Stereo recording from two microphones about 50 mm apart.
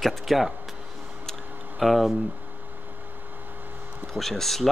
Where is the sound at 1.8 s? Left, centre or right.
Centre.